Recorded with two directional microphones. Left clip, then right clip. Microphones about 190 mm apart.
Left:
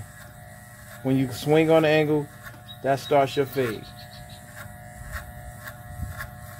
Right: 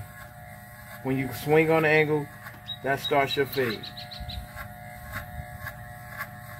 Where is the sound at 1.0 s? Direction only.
60° left (ahead or behind).